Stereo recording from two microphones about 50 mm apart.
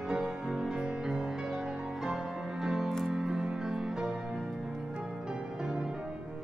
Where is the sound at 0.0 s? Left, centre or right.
Centre.